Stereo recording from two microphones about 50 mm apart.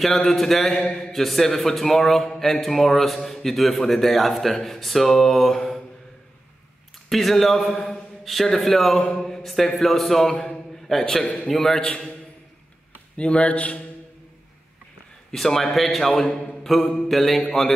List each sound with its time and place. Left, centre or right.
0.0 s speech: centre
7.1 s a man's voice: centre
9.2 s mantra: centre
9.8 s a man's voice: centre
13.1 s a man's voice: left
15.3 s a man's voice: centre